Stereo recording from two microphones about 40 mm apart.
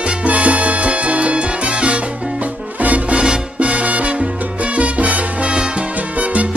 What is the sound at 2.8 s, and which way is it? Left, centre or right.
Music, right.